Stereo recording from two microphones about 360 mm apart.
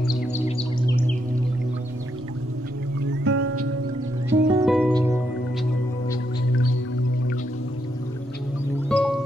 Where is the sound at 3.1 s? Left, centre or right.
Right.